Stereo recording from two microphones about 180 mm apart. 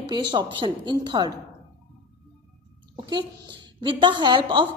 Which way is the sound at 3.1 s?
25° right (ahead or behind).